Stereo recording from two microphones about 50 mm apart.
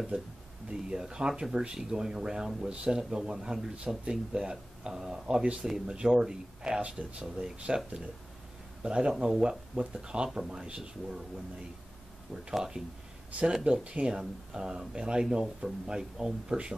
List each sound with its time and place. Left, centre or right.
0.7 s speech: centre
5.6 s speech: centre
9.1 s speech: centre
12.4 s speech: centre